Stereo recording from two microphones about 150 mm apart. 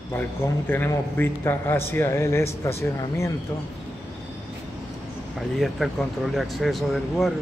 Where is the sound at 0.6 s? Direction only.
15° left (ahead or behind).